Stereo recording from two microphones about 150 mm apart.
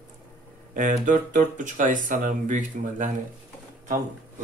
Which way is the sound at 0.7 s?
60° right (ahead or behind).